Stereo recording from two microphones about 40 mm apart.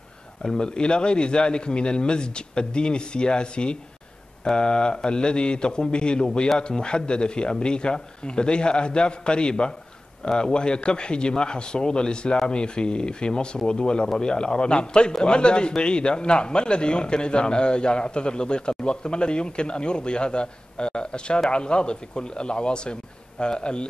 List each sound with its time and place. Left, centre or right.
0.4 s a man's voice: centre